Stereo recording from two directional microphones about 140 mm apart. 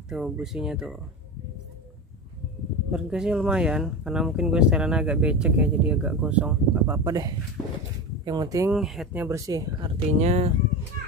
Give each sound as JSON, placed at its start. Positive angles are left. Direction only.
{"t": 0.1, "sound": "speech", "side_deg": -5}
{"t": 2.9, "sound": "speech", "side_deg": -5}
{"t": 6.9, "sound": "speech", "side_deg": -25}
{"t": 7.6, "sound": "a sound", "side_deg": 10}
{"t": 8.3, "sound": "speech", "side_deg": -25}
{"t": 8.7, "sound": "speech", "side_deg": 0}
{"t": 9.1, "sound": "speech", "side_deg": -20}
{"t": 9.8, "sound": "speech", "side_deg": -35}
{"t": 10.1, "sound": "speech", "side_deg": -55}